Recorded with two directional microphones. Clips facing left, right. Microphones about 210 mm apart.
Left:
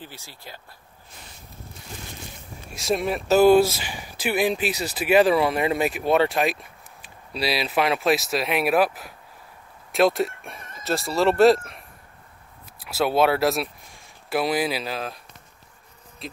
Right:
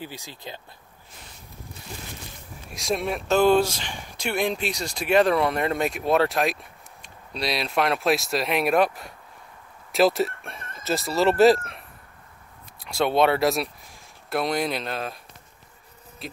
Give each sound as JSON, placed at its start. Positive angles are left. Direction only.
{"t": 0.0, "sound": "speech", "side_deg": -15}
{"t": 2.7, "sound": "speech", "side_deg": 0}
{"t": 16.2, "sound": "bee", "side_deg": 0}